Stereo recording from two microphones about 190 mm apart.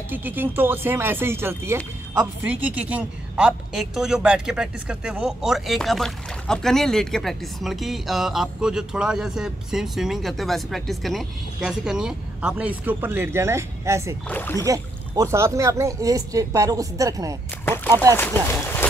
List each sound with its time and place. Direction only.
0.1 s speech: 10° right (ahead or behind)
14.2 s speech: 10° left (ahead or behind)
14.6 s speech: 15° right (ahead or behind)
18.1 s speech: 10° left (ahead or behind)